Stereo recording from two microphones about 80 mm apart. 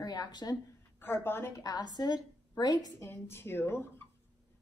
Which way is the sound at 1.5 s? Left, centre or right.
Left.